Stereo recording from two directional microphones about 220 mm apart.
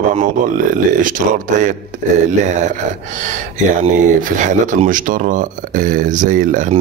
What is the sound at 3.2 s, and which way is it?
Speech, 35° right (ahead or behind).